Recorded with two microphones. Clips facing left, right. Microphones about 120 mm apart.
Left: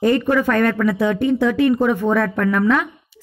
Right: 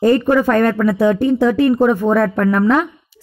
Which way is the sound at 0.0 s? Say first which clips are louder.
Right 3 dB; 35° right (ahead or behind).